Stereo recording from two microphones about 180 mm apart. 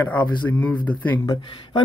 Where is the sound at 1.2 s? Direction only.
25° left (ahead or behind).